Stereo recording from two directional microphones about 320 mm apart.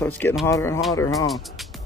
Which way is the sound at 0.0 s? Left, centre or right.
Centre.